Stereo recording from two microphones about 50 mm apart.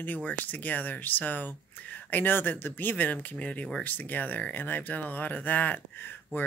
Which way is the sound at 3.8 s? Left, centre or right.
Left.